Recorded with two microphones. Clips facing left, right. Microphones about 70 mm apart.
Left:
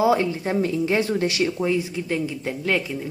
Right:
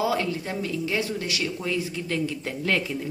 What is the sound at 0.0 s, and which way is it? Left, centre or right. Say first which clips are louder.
Speech: left 6 dB; left.